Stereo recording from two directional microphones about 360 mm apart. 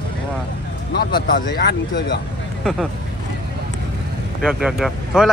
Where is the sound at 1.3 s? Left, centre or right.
Left.